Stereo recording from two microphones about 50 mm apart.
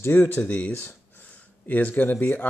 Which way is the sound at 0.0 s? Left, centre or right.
Left.